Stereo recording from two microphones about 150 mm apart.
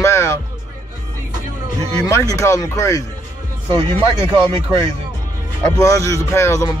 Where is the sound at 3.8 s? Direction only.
35° right (ahead or behind).